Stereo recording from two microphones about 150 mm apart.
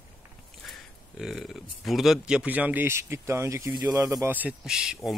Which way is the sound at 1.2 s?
Centre (ahead or behind).